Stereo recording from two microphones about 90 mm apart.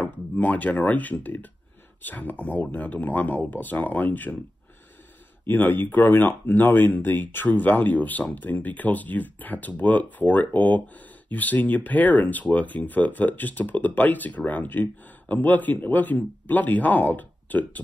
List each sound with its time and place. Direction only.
0.4 s speech: 15° left (ahead or behind)
5.5 s speech: 25° left (ahead or behind)